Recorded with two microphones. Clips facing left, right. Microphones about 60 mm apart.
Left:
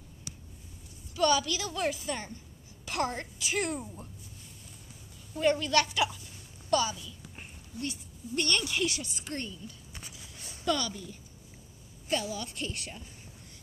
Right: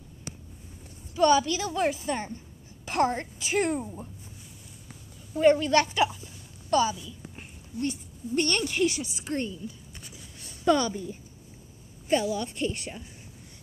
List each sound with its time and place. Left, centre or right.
1.1 s a woman's voice: right
5.3 s a woman's voice: right
10.6 s a woman's voice: right